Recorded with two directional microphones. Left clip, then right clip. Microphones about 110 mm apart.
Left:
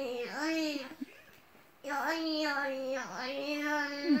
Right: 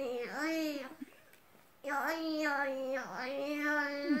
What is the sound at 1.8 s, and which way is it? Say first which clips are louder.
Child singing: left 2 dB; 25° right (ahead or behind).